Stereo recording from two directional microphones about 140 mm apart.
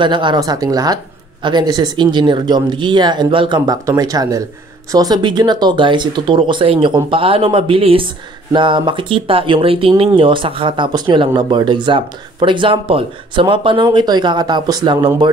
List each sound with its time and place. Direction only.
0.0 s speech: 35° right (ahead or behind)